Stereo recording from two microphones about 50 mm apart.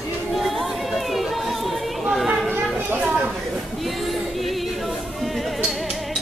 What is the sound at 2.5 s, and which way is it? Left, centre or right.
Children playing, right.